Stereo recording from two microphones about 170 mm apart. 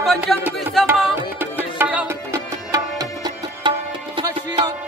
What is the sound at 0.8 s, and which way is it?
Tabla, centre (ahead or behind).